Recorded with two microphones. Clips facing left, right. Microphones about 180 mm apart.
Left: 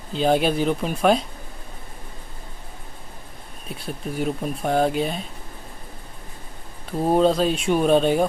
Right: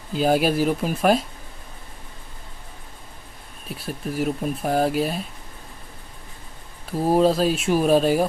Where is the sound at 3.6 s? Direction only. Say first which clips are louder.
Right 1 dB; centre (ahead or behind).